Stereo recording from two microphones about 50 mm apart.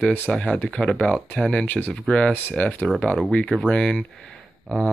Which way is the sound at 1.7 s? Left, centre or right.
Left.